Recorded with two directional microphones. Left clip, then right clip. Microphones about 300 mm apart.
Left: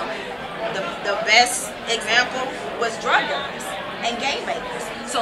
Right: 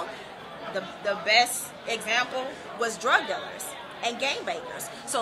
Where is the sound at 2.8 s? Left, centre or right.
Right.